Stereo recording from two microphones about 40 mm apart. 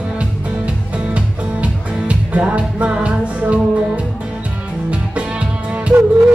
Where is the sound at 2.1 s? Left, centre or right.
Right.